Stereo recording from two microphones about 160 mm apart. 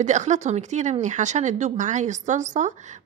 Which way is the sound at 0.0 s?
50° right (ahead or behind).